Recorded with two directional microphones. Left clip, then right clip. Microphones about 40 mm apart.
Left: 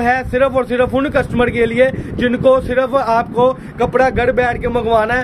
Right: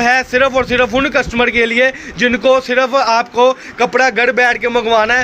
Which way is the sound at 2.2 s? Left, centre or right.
Left.